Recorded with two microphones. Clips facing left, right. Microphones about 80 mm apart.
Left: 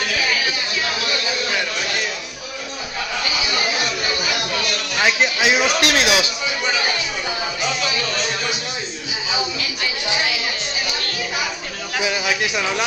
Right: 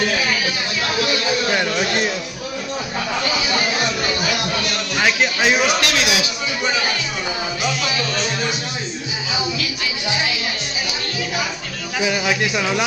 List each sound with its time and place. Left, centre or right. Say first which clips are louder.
5.0 s speech: even; centre
5.8 s a man's voice: left 2 dB; left
12.1 s speech: right 3 dB; centre